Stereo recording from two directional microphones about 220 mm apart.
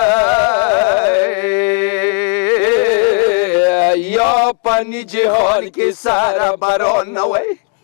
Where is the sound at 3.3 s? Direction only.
20° left (ahead or behind).